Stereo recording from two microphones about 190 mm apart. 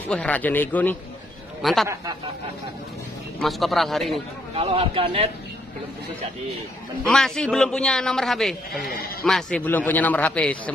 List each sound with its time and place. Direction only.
0.0 s a man's voice: 5° left (ahead or behind)
3.3 s a man's voice: centre (ahead or behind)
4.6 s speech: 30° right (ahead or behind)
7.1 s a man's voice: 5° left (ahead or behind)